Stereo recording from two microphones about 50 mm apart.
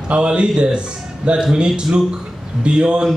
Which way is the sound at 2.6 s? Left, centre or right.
Centre.